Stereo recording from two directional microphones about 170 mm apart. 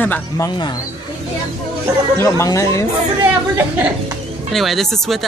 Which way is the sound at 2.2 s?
20° left (ahead or behind).